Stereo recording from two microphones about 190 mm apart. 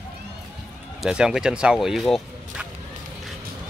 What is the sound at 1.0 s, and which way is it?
Speech, 5° right (ahead or behind).